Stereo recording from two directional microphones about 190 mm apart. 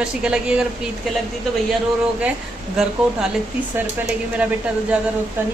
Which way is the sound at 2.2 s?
5° right (ahead or behind).